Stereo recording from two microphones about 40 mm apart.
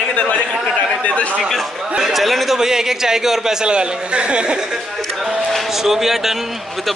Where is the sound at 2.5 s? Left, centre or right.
Centre.